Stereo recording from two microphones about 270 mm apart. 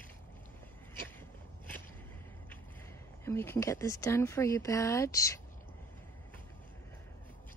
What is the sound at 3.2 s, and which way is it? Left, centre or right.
Speech, centre.